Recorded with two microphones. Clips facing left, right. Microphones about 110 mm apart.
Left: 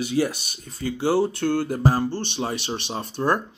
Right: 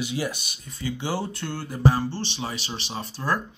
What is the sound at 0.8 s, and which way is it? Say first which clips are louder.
Speech: left 7 dB; 45° left (ahead or behind).